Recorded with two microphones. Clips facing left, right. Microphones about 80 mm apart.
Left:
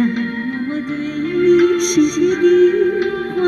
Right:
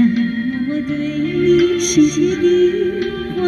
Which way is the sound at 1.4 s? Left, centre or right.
Left.